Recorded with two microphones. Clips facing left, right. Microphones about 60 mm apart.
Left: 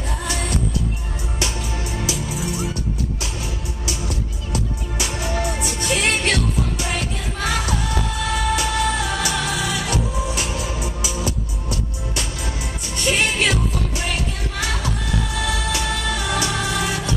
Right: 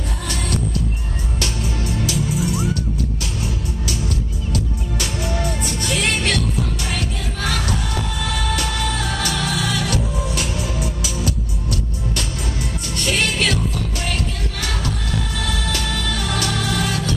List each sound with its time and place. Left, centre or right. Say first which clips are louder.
1.9 s music: right 5 dB; centre
5.0 s music: left 1 dB; centre
5.9 s music: left 1 dB; centre
7.4 s music: left 1 dB; centre
12.9 s music: left 1 dB; centre
13.9 s music: even; centre